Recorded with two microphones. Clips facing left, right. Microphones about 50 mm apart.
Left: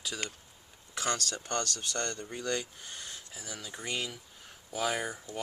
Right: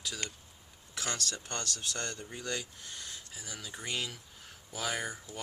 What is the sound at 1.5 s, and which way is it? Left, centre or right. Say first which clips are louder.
Speech: left 4 dB; centre.